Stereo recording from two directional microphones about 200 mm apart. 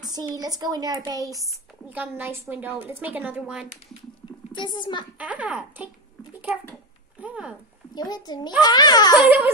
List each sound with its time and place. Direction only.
0.0 s a woman's voice: 20° right (ahead or behind)
4.5 s a child's voice: 20° left (ahead or behind)
5.2 s a woman's voice: 5° right (ahead or behind)
6.4 s a sound: centre (ahead or behind)
7.9 s a child's voice: 20° left (ahead or behind)
9.2 s a woman's voice: 10° right (ahead or behind)